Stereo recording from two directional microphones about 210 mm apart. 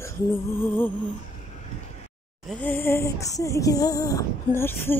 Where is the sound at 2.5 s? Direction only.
10° left (ahead or behind).